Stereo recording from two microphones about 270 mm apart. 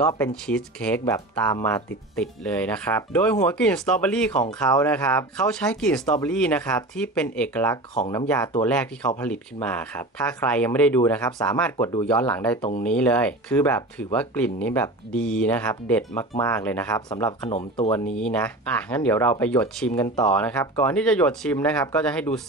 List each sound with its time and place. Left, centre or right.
0.0 s speech: centre
17.5 s speech: left
17.9 s speech: centre